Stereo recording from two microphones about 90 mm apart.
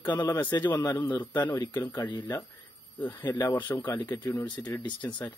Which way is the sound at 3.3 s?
20° left (ahead or behind).